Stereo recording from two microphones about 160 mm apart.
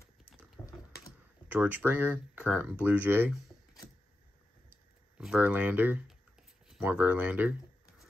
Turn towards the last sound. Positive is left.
turn(degrees=-10)  # may be behind; listen again after turning